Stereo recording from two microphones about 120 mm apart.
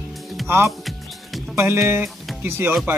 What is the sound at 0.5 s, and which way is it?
Speech, 20° right (ahead or behind).